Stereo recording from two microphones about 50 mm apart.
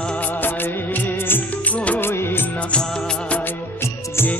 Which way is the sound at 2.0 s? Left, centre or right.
Left.